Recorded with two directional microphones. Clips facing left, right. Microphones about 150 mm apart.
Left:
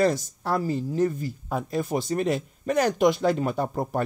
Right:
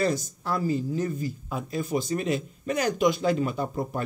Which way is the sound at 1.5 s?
55° left (ahead or behind).